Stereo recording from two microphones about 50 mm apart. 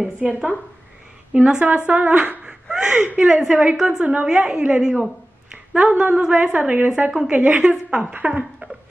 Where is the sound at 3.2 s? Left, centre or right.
Centre.